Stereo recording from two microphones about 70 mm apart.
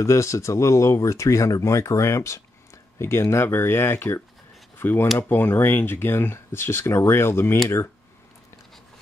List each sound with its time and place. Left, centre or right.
0.0 s speech: left